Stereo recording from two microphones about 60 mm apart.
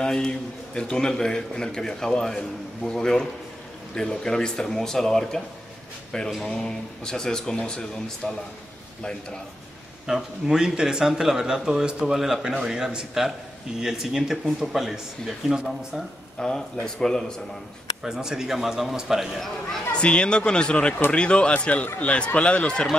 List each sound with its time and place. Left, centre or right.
0.0 s a man's voice: centre
10.0 s speech: centre
16.3 s a man's voice: centre
18.0 s speech: centre
19.9 s a man's voice: centre